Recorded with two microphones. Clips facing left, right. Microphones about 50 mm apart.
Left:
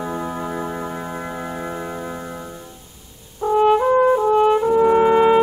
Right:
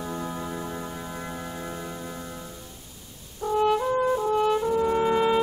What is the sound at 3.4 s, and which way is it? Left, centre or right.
French horn, left.